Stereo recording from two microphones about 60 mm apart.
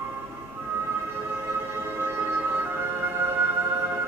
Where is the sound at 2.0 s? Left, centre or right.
Right.